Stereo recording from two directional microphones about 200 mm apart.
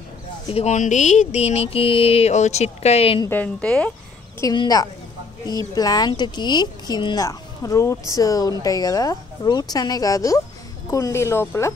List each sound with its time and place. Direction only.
0.5 s speech: 35° left (ahead or behind)
3.3 s speech: 10° left (ahead or behind)
4.4 s speech: 20° left (ahead or behind)